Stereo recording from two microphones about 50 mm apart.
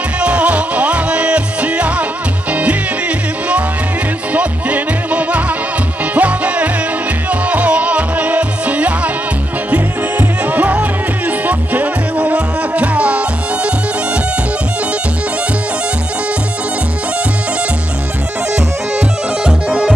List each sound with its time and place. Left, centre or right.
0.2 s music: right
4.3 s music: right
18.9 s music: centre